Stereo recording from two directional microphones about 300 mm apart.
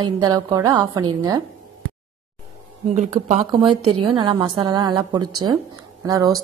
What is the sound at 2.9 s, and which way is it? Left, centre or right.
A woman's voice, right.